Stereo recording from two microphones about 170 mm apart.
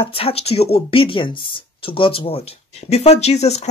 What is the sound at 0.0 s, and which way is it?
Speech, 35° left (ahead or behind).